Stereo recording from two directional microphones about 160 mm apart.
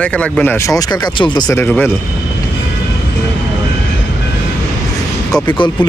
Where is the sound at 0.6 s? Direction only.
25° left (ahead or behind).